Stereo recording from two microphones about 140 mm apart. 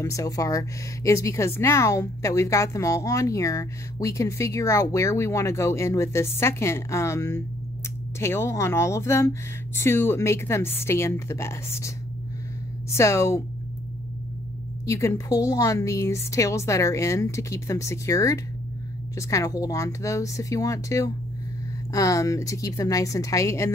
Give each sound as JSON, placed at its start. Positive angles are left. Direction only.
{"t": 0.0, "sound": "speech", "side_deg": 25}
{"t": 12.9, "sound": "speech", "side_deg": 20}
{"t": 14.9, "sound": "speech", "side_deg": 20}